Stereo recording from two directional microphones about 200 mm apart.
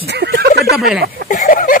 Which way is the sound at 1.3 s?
40° left (ahead or behind).